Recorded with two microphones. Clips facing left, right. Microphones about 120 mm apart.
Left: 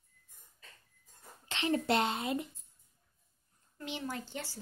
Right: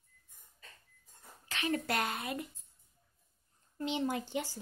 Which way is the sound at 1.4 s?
25° left (ahead or behind).